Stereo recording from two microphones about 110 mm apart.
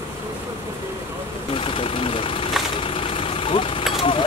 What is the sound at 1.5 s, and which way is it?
Speech, 55° left (ahead or behind).